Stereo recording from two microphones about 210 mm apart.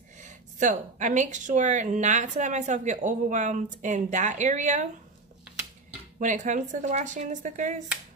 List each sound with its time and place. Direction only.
0.2 s speech: 35° right (ahead or behind)
6.1 s speech: 35° right (ahead or behind)